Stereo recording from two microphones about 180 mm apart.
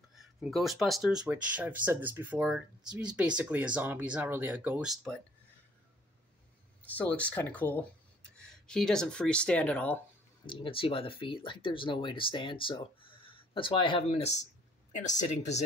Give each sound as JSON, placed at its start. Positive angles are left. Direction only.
{"t": 0.1, "sound": "speech", "side_deg": 0}
{"t": 6.8, "sound": "speech", "side_deg": 10}
{"t": 10.4, "sound": "speech", "side_deg": 30}